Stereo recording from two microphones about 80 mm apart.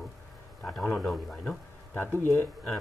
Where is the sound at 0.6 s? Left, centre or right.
Centre.